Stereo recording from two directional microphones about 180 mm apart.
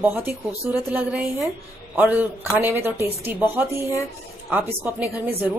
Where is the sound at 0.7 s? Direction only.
10° right (ahead or behind).